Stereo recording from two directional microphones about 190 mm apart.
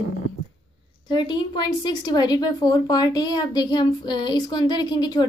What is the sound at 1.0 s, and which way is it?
A woman's voice, 25° left (ahead or behind).